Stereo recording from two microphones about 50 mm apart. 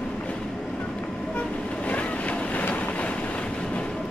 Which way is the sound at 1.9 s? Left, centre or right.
Left.